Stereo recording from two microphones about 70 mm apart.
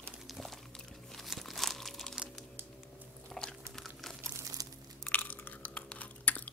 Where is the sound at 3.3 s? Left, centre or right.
Centre.